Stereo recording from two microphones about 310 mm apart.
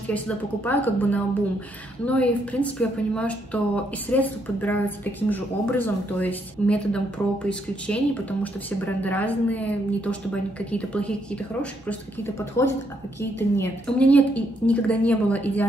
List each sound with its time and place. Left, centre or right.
0.7 s speech: centre